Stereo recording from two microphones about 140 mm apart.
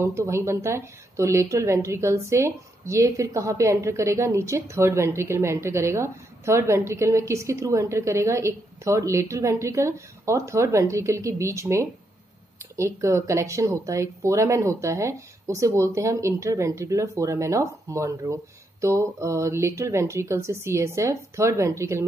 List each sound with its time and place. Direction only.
0.0 s speech: 20° right (ahead or behind)